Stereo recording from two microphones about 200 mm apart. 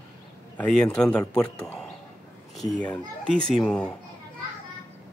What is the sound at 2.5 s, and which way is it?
A child's voice, 5° left (ahead or behind).